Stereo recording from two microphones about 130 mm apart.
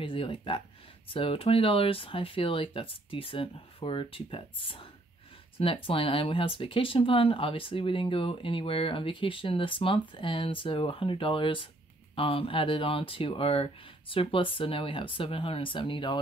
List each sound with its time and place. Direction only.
0.0 s speech: 40° left (ahead or behind)